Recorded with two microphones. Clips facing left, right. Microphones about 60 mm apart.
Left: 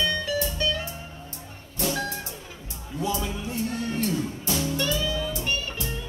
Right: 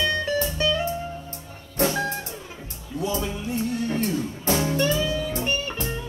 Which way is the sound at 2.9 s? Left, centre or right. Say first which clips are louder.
Right 1 dB; left.